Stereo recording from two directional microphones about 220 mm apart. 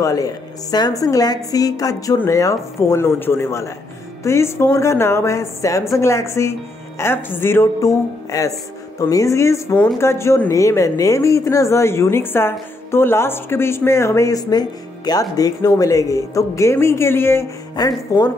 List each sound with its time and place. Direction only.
0.0 s speech: 15° left (ahead or behind)